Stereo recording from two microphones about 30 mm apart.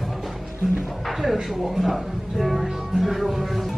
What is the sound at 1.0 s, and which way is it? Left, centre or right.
Speech, centre.